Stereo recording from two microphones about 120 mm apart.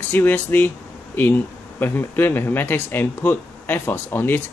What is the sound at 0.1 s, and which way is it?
Speech, 15° left (ahead or behind).